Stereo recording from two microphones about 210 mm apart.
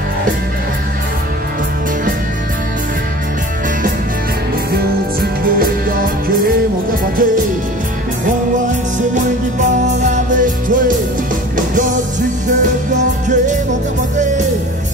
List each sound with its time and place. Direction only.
4.7 s music: 45° right (ahead or behind)
9.1 s music: 35° right (ahead or behind)